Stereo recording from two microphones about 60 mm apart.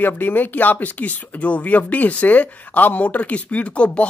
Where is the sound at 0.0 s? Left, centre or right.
Left.